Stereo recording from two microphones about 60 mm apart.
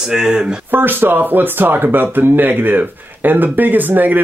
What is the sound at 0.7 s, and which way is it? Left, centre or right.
Speech, right.